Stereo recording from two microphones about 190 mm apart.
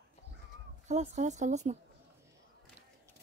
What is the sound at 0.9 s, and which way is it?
Speech, 40° right (ahead or behind).